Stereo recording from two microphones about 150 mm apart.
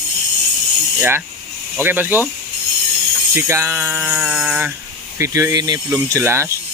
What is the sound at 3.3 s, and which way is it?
Speech, 15° right (ahead or behind).